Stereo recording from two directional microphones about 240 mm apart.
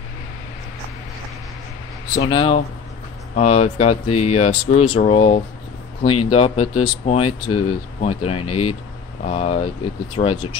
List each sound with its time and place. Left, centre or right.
2.1 s speech: centre